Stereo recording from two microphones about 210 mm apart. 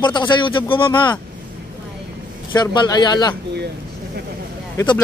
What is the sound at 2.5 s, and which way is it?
Speech, 20° left (ahead or behind).